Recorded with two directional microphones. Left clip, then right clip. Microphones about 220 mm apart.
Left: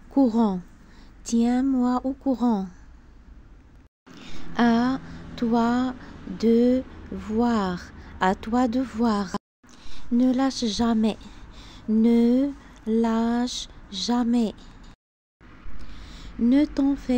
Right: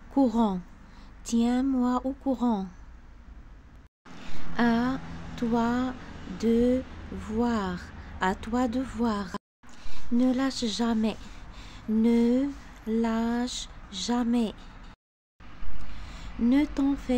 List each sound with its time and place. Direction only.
0.1 s speech: 10° left (ahead or behind)
4.2 s speech: 15° left (ahead or behind)
16.0 s speech: 15° left (ahead or behind)